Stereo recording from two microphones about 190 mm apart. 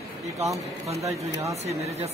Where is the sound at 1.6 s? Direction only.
35° right (ahead or behind).